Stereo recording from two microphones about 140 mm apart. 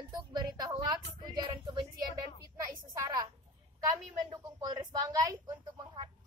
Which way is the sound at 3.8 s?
25° right (ahead or behind).